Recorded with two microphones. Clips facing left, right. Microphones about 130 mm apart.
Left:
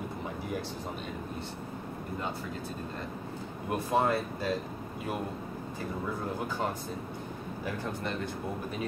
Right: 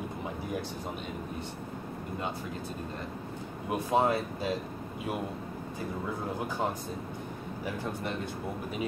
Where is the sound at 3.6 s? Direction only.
15° right (ahead or behind).